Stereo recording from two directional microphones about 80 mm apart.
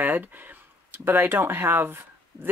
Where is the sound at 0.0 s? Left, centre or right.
Right.